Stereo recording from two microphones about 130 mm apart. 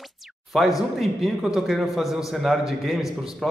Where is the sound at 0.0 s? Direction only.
Centre (ahead or behind).